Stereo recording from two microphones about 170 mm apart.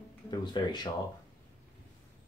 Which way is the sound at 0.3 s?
25° left (ahead or behind).